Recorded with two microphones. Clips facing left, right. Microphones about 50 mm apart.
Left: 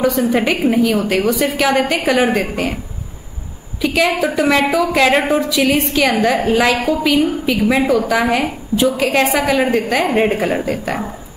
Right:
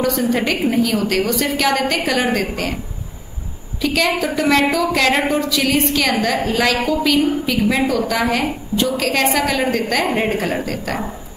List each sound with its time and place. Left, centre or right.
0.0 s a woman's voice: centre
3.8 s a woman's voice: centre
6.3 s a woman's voice: centre